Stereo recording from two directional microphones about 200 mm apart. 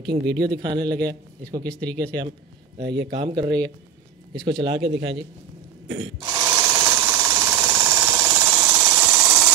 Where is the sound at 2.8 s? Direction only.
60° right (ahead or behind).